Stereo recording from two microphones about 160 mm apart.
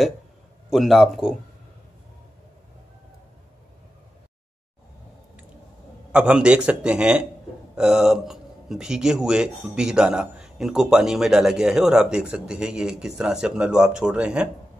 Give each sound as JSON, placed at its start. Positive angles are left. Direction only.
{"t": 0.7, "sound": "speech", "side_deg": 0}
{"t": 6.1, "sound": "a man's voice", "side_deg": -5}